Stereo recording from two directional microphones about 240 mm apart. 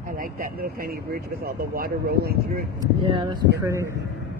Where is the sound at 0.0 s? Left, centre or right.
Right.